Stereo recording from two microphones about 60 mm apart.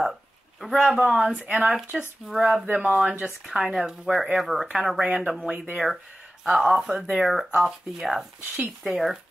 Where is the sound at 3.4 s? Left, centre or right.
Centre.